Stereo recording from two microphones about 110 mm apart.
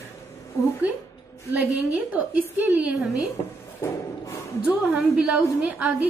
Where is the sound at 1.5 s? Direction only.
10° right (ahead or behind).